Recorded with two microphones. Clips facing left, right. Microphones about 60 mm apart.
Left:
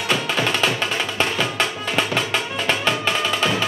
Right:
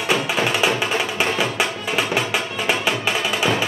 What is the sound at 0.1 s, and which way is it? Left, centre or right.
Music, centre.